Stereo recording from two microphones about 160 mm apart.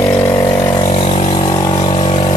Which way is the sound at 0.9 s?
45° left (ahead or behind).